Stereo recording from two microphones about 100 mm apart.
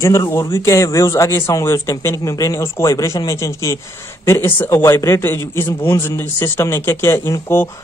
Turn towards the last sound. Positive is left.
turn(degrees=25)  # may be behind; listen again after turning